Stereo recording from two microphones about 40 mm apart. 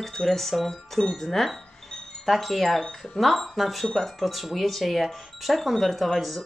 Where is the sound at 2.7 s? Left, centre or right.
Left.